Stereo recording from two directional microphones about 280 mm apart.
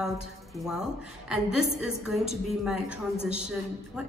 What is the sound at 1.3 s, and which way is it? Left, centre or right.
A woman's voice, centre.